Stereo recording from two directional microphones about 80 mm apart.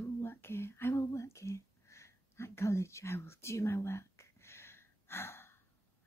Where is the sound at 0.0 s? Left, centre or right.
Left.